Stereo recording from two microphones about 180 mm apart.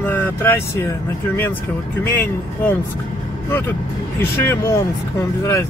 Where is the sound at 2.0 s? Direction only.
10° left (ahead or behind).